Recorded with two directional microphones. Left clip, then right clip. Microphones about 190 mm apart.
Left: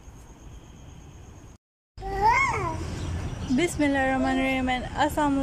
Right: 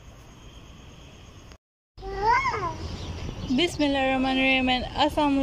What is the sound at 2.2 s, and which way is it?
Babbling, 15° left (ahead or behind).